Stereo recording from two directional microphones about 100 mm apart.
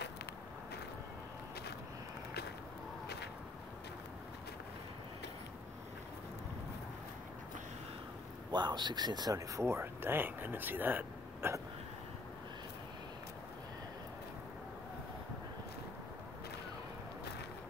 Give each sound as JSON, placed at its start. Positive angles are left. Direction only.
{"t": 8.5, "sound": "speech", "side_deg": -45}